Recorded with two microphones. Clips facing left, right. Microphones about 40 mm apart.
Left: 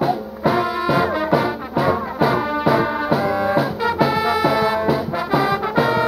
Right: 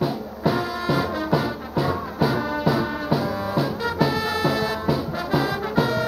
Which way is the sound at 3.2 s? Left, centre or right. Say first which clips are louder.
Left 7 dB; left.